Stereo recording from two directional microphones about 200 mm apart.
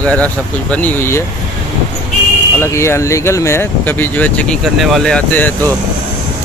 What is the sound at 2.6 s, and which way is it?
Speech, 15° left (ahead or behind).